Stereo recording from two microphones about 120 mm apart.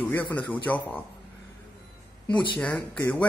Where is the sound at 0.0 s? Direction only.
15° left (ahead or behind).